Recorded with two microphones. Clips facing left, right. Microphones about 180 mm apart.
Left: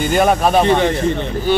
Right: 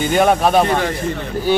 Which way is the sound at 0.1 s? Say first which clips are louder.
Even; centre (ahead or behind).